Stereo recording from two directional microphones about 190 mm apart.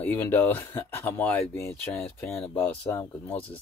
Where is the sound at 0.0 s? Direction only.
10° left (ahead or behind).